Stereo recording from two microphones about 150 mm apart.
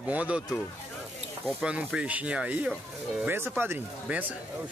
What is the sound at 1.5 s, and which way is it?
Speech, 5° right (ahead or behind).